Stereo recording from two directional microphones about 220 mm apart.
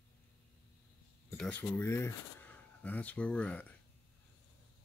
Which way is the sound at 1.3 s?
5° left (ahead or behind).